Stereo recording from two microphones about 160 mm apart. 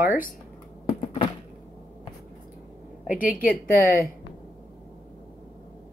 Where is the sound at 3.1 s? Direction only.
60° left (ahead or behind).